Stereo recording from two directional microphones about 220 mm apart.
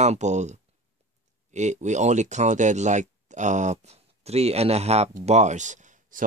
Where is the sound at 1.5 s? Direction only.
30° right (ahead or behind).